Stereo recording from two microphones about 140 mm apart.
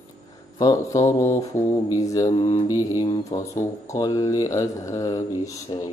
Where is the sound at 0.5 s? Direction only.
25° left (ahead or behind).